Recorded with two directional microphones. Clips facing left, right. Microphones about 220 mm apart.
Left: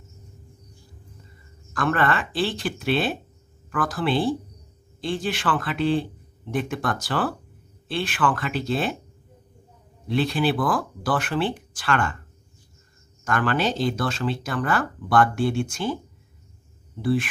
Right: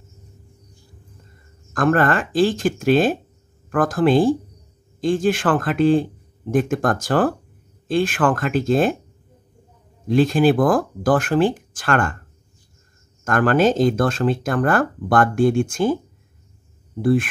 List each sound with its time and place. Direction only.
1.7 s speech: 45° right (ahead or behind)
10.0 s speech: 45° right (ahead or behind)
13.2 s speech: 45° right (ahead or behind)
17.0 s speech: 50° right (ahead or behind)